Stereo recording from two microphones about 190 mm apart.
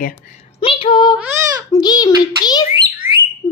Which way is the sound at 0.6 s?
25° left (ahead or behind).